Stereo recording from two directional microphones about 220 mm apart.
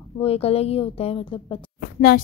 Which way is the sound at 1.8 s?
45° left (ahead or behind).